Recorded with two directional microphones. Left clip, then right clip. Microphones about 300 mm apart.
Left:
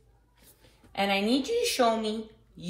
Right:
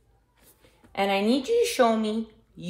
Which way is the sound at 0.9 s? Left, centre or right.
Right.